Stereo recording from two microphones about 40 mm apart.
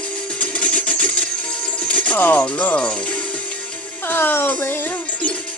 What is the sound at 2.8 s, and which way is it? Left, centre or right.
Speech, left.